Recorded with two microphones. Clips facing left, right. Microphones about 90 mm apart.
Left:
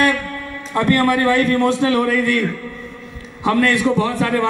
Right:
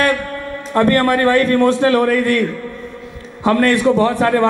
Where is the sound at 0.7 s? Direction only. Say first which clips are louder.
Right 2 dB; 45° right (ahead or behind).